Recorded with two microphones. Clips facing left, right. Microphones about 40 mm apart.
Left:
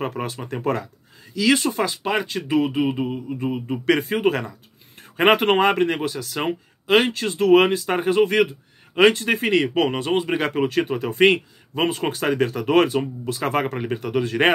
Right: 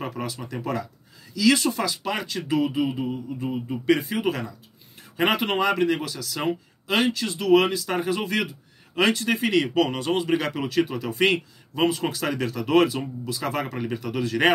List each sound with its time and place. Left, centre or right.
0.0 s speech: left
1.3 s speech: left
2.7 s speech: left
3.8 s speech: left